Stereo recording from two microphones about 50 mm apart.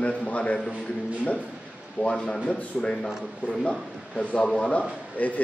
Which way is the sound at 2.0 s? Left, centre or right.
Centre.